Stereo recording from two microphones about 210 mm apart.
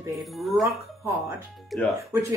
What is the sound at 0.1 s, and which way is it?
Speech, centre (ahead or behind).